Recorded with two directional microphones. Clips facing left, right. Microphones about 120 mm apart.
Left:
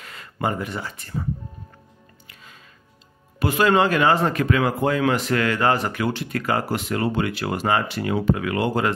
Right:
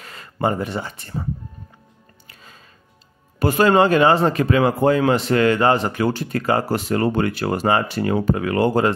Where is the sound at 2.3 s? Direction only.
35° right (ahead or behind).